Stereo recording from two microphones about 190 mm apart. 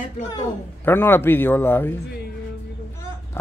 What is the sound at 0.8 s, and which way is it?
Speech, 10° left (ahead or behind).